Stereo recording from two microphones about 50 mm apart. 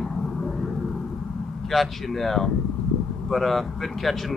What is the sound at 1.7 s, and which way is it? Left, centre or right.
Speech, centre.